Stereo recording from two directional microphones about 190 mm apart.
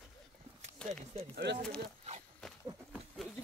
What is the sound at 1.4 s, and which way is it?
Speech, 65° right (ahead or behind).